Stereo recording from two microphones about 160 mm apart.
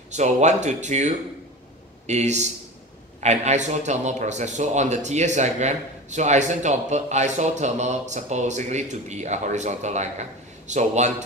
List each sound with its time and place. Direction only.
0.1 s speech: 45° right (ahead or behind)